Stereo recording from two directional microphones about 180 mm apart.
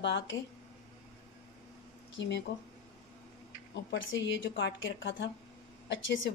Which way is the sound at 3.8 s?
90° left.